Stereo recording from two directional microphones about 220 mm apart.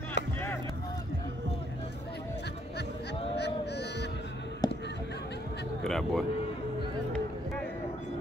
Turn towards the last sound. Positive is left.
turn(degrees=0)  # may be behind; listen again after turning